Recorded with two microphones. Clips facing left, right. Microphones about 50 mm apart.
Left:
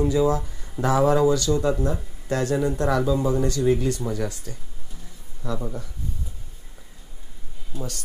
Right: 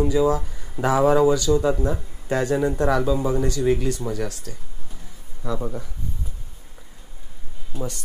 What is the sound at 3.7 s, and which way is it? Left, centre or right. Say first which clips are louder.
Speech: even; centre.